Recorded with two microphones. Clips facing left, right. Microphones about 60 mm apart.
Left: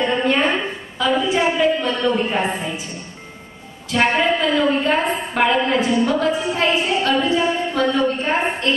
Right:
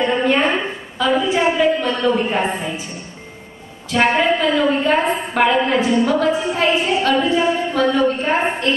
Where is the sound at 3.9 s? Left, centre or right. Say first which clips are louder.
Right 2 dB; centre.